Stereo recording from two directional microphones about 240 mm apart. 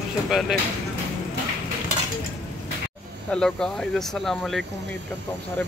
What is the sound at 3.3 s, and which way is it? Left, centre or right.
Speech, centre.